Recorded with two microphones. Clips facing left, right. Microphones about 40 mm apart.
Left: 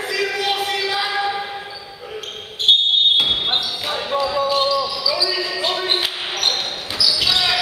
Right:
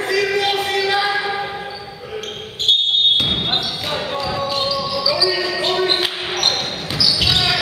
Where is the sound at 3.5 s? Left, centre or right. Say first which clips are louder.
Right 1 dB; centre.